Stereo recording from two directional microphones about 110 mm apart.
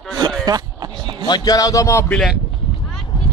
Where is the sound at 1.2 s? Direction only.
40° left (ahead or behind).